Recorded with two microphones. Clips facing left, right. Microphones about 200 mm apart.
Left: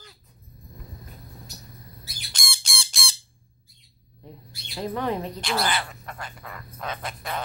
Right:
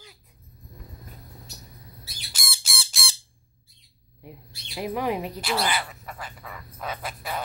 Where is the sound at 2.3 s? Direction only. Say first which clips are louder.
Left 1 dB; 5° right (ahead or behind).